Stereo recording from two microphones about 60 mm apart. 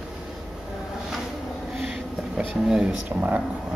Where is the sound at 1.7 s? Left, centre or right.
Centre.